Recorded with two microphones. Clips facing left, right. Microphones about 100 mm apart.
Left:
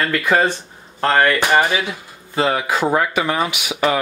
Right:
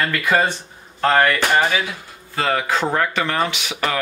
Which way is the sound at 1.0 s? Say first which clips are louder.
Even; centre (ahead or behind).